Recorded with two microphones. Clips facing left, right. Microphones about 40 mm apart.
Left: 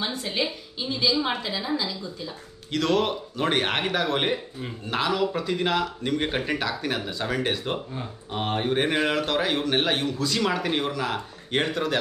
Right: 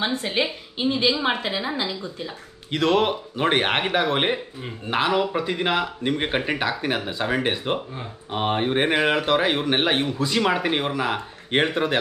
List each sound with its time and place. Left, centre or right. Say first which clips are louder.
0.0 s a woman's voice: right 4 dB; right
2.7 s speech: right 3 dB; right